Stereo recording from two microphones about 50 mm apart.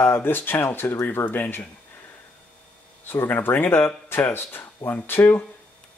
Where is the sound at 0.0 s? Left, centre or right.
Left.